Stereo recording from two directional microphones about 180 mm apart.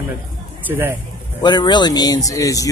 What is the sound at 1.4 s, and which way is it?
Speech, 25° left (ahead or behind).